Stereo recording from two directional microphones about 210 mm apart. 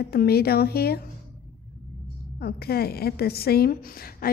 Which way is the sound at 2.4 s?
50° left (ahead or behind).